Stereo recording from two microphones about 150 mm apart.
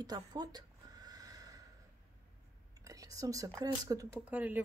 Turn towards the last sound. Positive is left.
turn(degrees=-10)  # may be behind; listen again after turning